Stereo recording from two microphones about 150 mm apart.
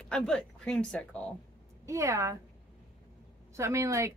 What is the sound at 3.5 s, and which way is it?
Speech, 20° right (ahead or behind).